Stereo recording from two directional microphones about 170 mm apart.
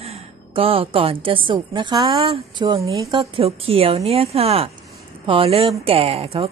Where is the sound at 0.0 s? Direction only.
35° right (ahead or behind).